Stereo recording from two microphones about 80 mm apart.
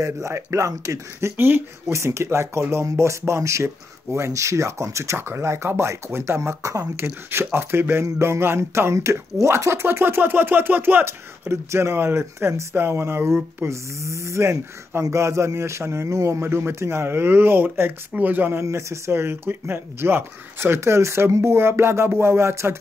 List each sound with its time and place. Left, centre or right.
0.0 s speech: right
1.3 s speech: right
1.9 s speech: right
7.2 s speech: right
18.6 s speech: right